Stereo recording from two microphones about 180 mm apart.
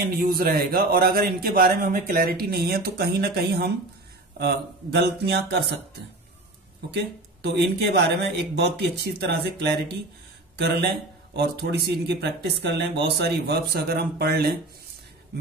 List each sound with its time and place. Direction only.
0.2 s speech: 55° right (ahead or behind)
6.9 s speech: 70° right (ahead or behind)